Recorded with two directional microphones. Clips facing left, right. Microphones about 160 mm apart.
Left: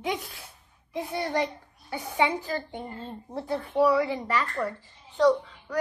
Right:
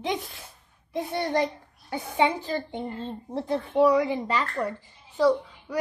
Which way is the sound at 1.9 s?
25° right (ahead or behind).